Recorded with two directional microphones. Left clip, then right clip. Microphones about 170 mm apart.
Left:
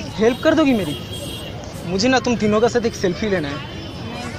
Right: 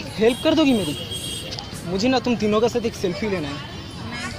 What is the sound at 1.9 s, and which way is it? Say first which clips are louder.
Speech: left 3 dB; 20° right (ahead or behind).